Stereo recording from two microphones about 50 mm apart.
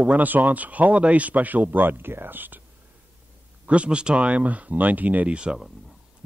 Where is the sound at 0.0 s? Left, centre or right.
Right.